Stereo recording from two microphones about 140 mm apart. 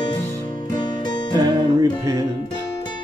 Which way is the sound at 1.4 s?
25° right (ahead or behind).